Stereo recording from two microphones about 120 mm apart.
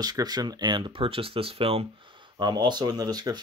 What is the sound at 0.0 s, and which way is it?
Speech, 35° right (ahead or behind).